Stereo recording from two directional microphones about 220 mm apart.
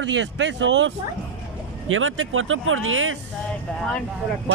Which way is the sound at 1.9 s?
65° right (ahead or behind).